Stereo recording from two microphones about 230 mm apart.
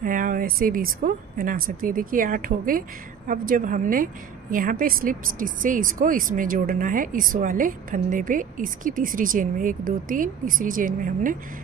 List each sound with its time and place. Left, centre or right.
0.0 s a woman's voice: right